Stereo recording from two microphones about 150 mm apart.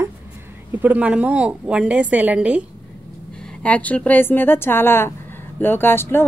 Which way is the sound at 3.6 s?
10° left (ahead or behind).